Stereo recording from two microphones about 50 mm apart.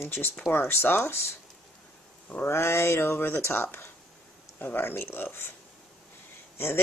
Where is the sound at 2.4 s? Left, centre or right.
Left.